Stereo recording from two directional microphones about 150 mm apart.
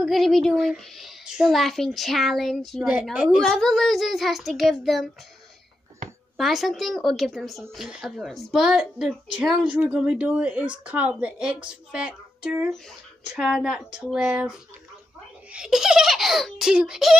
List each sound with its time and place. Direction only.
0.0 s a child's voice: centre (ahead or behind)
6.3 s a child's voice: centre (ahead or behind)
15.5 s a child's voice: 5° right (ahead or behind)